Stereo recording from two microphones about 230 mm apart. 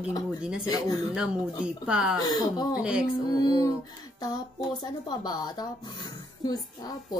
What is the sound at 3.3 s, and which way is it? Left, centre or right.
Speech, centre.